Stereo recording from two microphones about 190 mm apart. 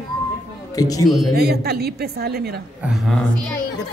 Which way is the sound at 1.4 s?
55° right (ahead or behind).